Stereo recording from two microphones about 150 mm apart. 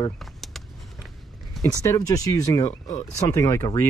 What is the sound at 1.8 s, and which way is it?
Speech, 25° left (ahead or behind).